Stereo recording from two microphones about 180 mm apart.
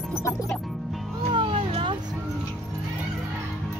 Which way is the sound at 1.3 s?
30° right (ahead or behind).